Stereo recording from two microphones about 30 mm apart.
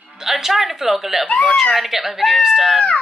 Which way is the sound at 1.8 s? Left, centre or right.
Centre.